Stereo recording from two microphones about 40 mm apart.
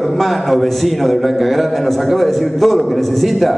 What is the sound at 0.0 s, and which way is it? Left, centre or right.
A man's voice, centre.